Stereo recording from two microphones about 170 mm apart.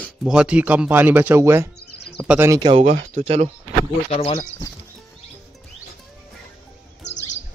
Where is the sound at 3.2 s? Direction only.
40° right (ahead or behind).